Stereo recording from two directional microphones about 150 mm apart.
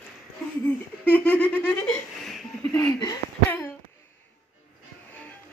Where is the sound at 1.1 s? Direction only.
10° left (ahead or behind).